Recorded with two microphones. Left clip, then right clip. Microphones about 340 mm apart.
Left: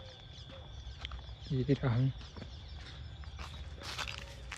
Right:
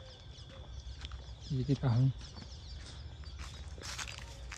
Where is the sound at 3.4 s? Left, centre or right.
Centre.